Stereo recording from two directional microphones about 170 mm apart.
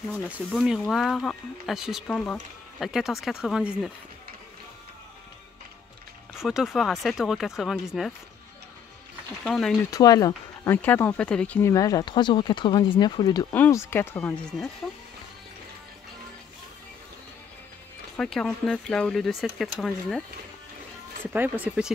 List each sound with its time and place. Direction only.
0.6 s speech: centre (ahead or behind)
6.3 s speech: 5° right (ahead or behind)
9.4 s speech: centre (ahead or behind)
9.8 s speech: 20° left (ahead or behind)
11.7 s speech: 20° left (ahead or behind)
18.1 s speech: 5° left (ahead or behind)
21.3 s speech: 10° right (ahead or behind)